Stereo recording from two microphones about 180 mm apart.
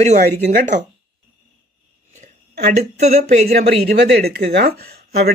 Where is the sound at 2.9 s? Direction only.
40° right (ahead or behind).